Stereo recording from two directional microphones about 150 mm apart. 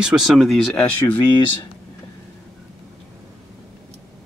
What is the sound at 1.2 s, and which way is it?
Speech, 30° left (ahead or behind).